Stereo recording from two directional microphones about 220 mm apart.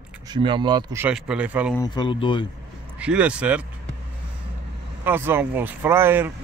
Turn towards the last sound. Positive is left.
turn(degrees=-10)  # may be behind; listen again after turning